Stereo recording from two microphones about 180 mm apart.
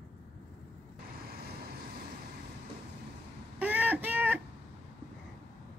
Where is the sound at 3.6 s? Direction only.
10° right (ahead or behind).